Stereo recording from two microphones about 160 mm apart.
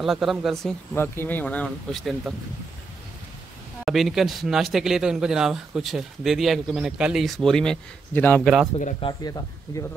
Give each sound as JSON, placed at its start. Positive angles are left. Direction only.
{"t": 0.0, "sound": "speech", "side_deg": 0}
{"t": 0.9, "sound": "speech", "side_deg": 15}
{"t": 3.8, "sound": "speech", "side_deg": 0}
{"t": 9.0, "sound": "speech", "side_deg": 25}